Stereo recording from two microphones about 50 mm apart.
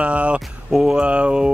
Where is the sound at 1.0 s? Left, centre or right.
Right.